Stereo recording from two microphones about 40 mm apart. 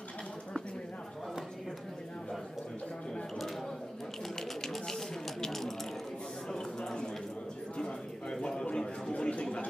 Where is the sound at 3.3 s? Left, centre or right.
Centre.